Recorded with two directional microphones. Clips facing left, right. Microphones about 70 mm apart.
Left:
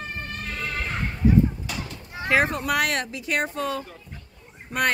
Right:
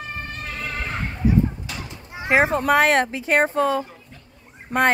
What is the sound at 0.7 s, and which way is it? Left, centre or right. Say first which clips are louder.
Neigh: right 1 dB; centre.